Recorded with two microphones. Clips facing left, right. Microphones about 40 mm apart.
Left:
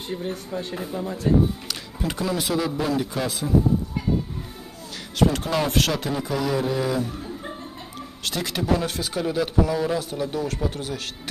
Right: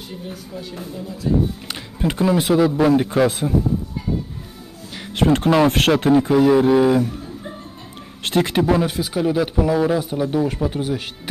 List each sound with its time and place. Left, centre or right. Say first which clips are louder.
0.9 s speech: left 1 dB; left
1.7 s speech: right 5 dB; right
2.8 s speech: right 9 dB; right
5.1 s speech: right 6 dB; right
8.2 s speech: right 9 dB; right
8.8 s speech: right 5 dB; centre